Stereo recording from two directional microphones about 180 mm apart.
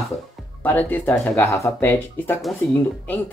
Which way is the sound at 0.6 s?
10° left (ahead or behind).